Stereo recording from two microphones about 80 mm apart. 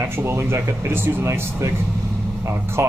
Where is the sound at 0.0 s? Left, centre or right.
Right.